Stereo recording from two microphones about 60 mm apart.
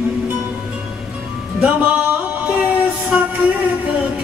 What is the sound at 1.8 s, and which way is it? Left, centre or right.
Music, right.